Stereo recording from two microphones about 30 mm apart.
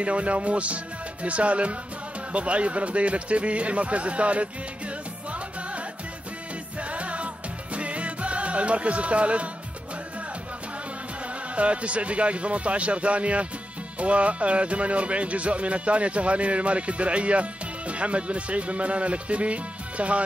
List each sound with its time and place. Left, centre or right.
0.0 s speech: right
6.9 s music: right
11.5 s speech: right